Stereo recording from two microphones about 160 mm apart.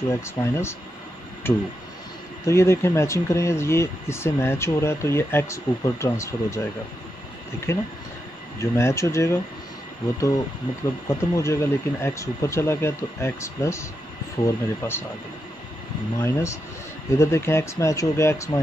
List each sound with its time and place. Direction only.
0.1 s speech: 15° left (ahead or behind)
7.7 s speech: 15° left (ahead or behind)
11.1 s speech: 15° left (ahead or behind)
16.2 s speech: 15° left (ahead or behind)